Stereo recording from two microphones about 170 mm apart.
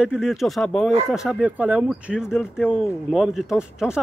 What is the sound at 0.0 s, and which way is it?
Speech, 5° right (ahead or behind).